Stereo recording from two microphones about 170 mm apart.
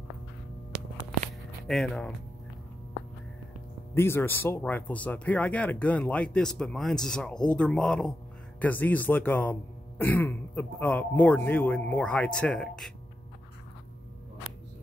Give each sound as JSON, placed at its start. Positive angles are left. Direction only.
{"t": 1.7, "sound": "speech", "side_deg": 0}
{"t": 3.9, "sound": "speech", "side_deg": 15}
{"t": 14.5, "sound": "a sound", "side_deg": -60}